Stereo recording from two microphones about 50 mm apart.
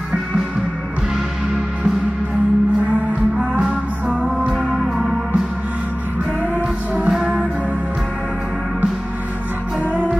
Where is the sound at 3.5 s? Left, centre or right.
Right.